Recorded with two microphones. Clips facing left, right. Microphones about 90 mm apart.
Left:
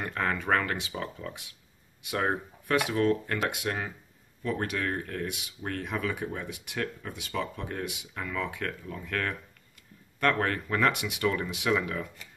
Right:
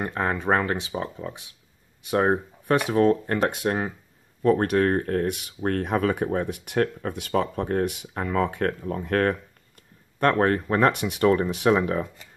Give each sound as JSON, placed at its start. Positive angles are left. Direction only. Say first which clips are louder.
{"t": 0.0, "sound": "speech", "louder": "right 5 dB", "side_deg": -30}
{"t": 4.4, "sound": "speech", "louder": "right 11 dB", "side_deg": -45}